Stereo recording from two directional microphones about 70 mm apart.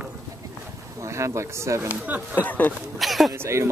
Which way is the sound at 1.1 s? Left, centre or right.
Right.